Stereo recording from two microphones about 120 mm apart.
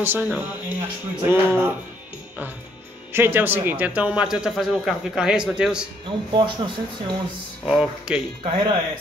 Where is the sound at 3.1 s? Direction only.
20° right (ahead or behind).